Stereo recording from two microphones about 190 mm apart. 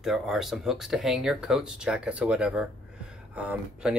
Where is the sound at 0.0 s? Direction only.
Centre (ahead or behind).